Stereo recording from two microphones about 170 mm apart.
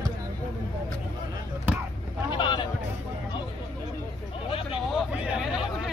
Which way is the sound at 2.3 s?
25° left (ahead or behind).